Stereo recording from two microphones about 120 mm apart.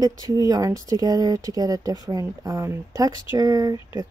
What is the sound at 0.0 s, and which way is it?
Speech, 30° right (ahead or behind).